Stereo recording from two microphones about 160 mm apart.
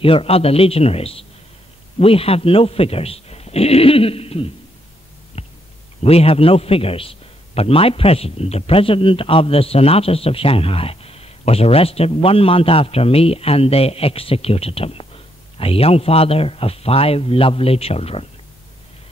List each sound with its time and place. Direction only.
0.0 s a man's voice: 35° left (ahead or behind)
5.4 s heart sounds: 40° left (ahead or behind)
6.0 s a man's voice: 40° left (ahead or behind)